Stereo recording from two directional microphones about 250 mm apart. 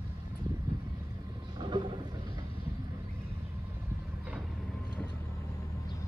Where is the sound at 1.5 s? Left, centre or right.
Centre.